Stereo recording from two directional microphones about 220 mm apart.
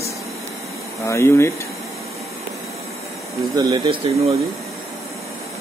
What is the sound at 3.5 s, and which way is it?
Speech, 20° right (ahead or behind).